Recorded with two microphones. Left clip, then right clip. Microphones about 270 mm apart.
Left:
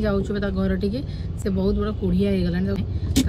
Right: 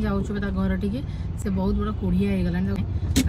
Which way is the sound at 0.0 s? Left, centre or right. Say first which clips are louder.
Left 5 dB; centre.